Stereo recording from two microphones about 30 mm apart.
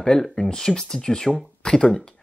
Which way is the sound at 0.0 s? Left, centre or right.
Left.